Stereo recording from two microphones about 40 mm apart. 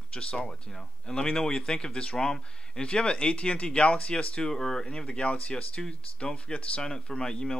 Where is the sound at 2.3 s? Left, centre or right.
Centre.